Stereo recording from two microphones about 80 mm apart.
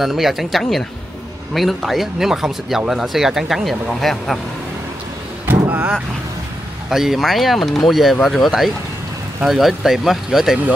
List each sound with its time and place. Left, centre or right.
0.0 s speech: centre
5.5 s vehicle: right
6.9 s speech: centre